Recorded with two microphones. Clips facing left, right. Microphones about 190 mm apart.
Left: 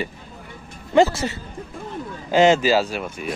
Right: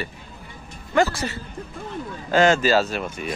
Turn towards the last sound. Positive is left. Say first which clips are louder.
# even
turn(degrees=10)  # may be behind; listen again after turning